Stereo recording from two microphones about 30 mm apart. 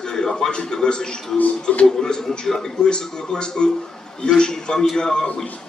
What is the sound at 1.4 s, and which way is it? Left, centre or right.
Speech, left.